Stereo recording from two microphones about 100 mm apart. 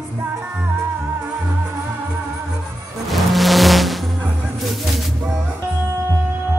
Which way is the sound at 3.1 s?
Centre (ahead or behind).